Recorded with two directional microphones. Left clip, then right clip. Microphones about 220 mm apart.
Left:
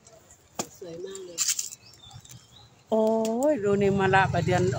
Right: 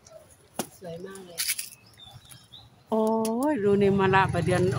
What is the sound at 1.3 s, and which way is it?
Bird, 15° right (ahead or behind).